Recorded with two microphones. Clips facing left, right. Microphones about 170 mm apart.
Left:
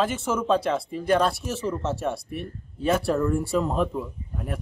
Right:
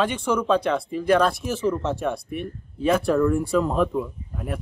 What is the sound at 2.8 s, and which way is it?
Speech, 40° left (ahead or behind).